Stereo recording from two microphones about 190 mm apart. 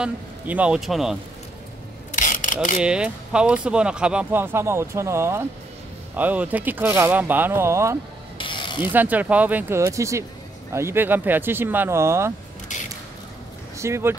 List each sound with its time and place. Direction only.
0.0 s speech: 5° right (ahead or behind)
2.1 s rub: 45° left (ahead or behind)
2.8 s speech: 5° right (ahead or behind)
8.4 s pulleys: 25° left (ahead or behind)
8.8 s speech: 10° right (ahead or behind)
12.7 s a sound: 40° left (ahead or behind)
13.7 s speech: 15° right (ahead or behind)